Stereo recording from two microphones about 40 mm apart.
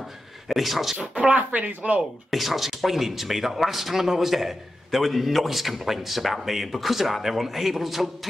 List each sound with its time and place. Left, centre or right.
0.5 s speech: centre
1.1 s speech: right
1.5 s speech: right
2.3 s speech: centre